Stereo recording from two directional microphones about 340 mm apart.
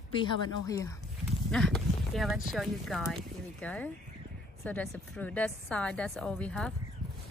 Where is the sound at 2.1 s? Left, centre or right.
Centre.